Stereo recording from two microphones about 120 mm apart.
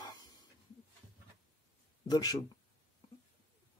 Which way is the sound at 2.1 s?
35° left (ahead or behind).